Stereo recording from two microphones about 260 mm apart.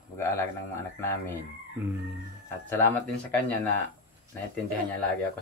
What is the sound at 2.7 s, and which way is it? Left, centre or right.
Speech, centre.